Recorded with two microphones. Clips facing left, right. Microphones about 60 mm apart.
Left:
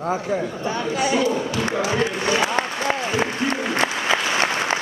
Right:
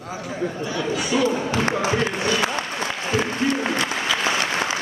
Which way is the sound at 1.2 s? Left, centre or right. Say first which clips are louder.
Even; right.